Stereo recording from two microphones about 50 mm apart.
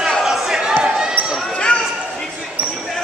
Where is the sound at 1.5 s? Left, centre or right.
Centre.